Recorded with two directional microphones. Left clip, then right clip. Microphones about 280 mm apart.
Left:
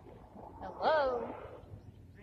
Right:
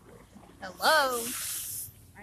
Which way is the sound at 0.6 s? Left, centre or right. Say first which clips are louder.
Right 6 dB; right.